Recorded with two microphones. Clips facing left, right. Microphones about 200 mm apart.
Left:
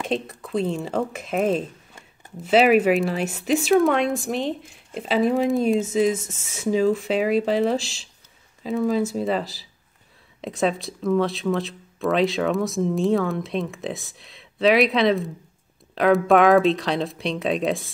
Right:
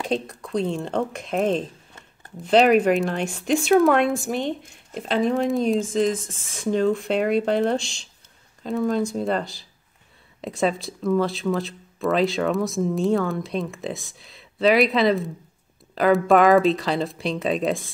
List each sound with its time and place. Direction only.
0.0 s speech: centre (ahead or behind)